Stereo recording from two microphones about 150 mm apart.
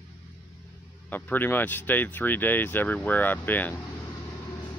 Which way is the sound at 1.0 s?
10° left (ahead or behind).